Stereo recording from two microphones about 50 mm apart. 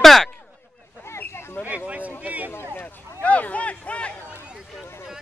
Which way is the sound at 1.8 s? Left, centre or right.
Right.